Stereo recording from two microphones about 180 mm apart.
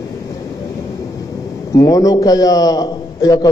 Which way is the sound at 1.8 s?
20° left (ahead or behind).